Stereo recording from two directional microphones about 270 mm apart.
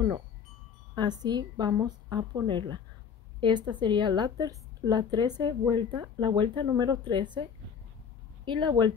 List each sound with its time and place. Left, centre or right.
0.9 s a woman's voice: centre
8.5 s a woman's voice: centre